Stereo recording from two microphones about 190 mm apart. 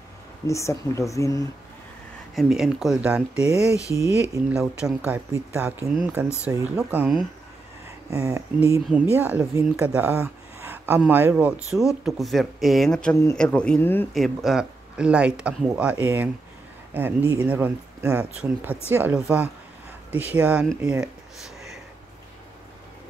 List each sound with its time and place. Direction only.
0.5 s speech: 15° left (ahead or behind)
2.3 s speech: centre (ahead or behind)
3.8 s speech: 15° left (ahead or behind)
4.3 s speech: 5° right (ahead or behind)
8.1 s speech: 15° right (ahead or behind); by 14.0 s 10° left (ahead or behind)
14.1 s speech: centre (ahead or behind)